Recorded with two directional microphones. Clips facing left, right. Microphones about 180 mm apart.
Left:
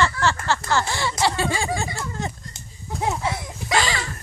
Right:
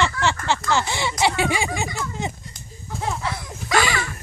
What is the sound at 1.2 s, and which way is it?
Speech, 20° right (ahead or behind).